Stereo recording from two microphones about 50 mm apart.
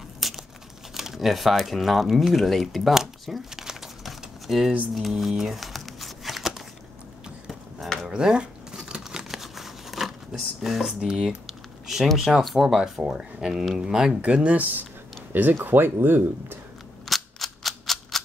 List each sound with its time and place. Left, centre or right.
0.2 s tearing: centre
0.9 s speech: centre
4.9 s crumpling: centre
8.1 s crumpling: centre
10.6 s speech: centre
13.0 s speech: centre
14.2 s speech: right
15.5 s speech: right
17.0 s cap gun: centre